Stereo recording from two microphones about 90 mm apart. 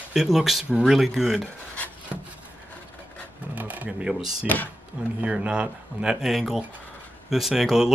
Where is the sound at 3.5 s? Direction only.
15° right (ahead or behind).